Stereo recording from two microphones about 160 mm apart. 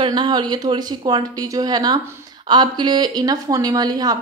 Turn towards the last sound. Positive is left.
turn(degrees=-25)  # may be behind; listen again after turning